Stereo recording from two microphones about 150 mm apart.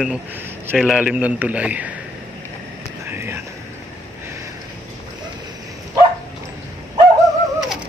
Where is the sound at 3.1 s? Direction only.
15° right (ahead or behind).